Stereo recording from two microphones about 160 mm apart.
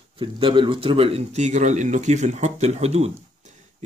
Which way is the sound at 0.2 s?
30° right (ahead or behind).